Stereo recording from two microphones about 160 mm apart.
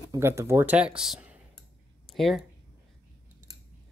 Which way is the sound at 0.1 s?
15° right (ahead or behind).